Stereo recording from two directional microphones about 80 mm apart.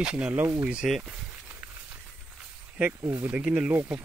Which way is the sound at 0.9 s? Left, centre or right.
Centre.